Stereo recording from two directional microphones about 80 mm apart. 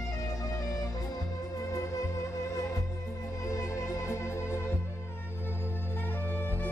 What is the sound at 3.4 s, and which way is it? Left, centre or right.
Music, left.